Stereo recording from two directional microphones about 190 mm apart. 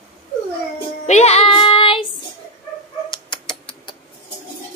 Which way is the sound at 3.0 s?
25° left (ahead or behind).